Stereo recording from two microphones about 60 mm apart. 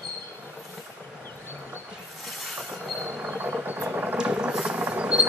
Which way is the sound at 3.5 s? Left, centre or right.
Right.